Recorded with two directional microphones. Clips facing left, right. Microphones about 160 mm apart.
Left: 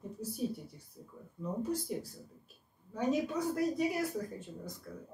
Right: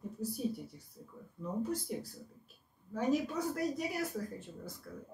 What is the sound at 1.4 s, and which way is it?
Speech, centre (ahead or behind).